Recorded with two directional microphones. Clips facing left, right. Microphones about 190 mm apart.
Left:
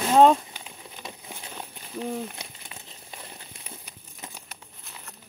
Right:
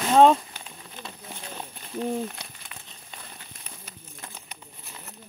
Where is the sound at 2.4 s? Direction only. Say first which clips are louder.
Left 1 dB; 25° left (ahead or behind).